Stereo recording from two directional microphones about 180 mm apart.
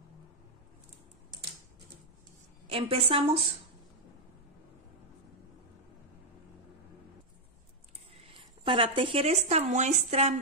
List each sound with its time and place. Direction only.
2.7 s a woman's voice: 30° right (ahead or behind)
8.1 s speech: 30° right (ahead or behind)